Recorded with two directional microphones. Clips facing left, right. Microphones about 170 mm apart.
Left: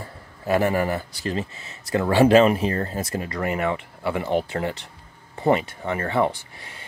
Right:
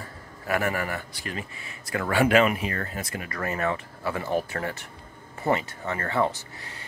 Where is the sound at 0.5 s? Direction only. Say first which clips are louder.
Left 6 dB; 25° left (ahead or behind).